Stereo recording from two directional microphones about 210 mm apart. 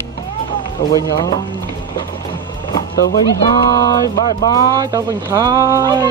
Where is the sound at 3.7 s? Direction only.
20° left (ahead or behind).